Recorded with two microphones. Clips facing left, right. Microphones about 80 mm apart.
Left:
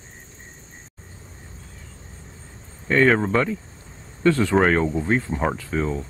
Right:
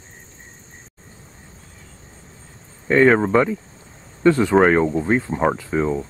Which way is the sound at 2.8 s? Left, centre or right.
Centre.